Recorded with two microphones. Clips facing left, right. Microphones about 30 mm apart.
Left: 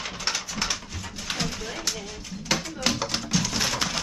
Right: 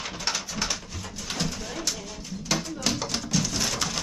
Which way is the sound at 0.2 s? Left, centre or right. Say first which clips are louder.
Left 1 dB; centre.